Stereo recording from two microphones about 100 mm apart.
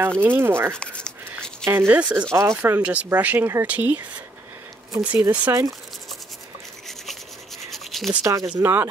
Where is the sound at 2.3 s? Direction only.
30° right (ahead or behind).